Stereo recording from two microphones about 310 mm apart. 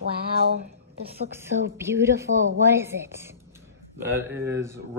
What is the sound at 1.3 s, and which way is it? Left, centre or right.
Speech, centre.